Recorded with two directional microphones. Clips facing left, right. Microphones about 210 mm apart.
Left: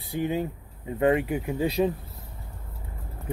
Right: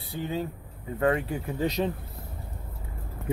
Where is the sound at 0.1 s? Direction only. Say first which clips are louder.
Left 4 dB; 25° left (ahead or behind).